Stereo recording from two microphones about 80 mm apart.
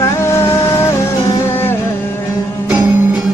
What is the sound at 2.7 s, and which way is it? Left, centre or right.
Music, centre.